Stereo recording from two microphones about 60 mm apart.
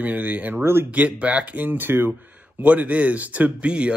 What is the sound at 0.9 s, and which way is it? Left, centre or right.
Speech, right.